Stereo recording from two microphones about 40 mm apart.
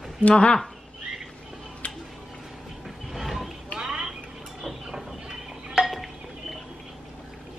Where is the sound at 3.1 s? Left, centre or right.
Centre.